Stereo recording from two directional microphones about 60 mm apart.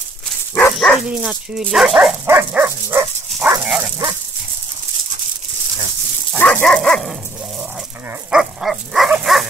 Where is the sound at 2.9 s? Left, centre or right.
Right.